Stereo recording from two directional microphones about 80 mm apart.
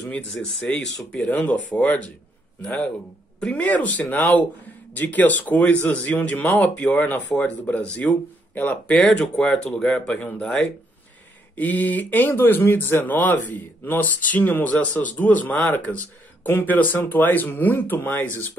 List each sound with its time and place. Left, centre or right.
0.1 s a man's voice: centre
3.3 s a man's voice: centre
11.5 s speech: left